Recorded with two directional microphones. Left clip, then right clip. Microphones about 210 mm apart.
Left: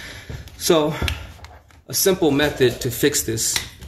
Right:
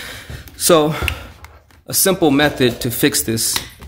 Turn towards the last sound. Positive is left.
turn(degrees=-50)  # may be behind; listen again after turning